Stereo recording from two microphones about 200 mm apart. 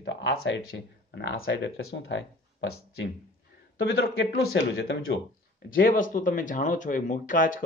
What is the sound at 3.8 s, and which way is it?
Speech, 75° left (ahead or behind).